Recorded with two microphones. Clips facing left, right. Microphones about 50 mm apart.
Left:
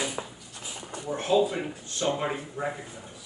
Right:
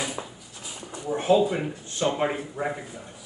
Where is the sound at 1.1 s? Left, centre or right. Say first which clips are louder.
Right 3 dB; centre.